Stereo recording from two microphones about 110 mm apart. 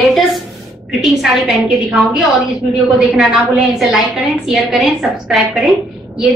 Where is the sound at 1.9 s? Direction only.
10° right (ahead or behind).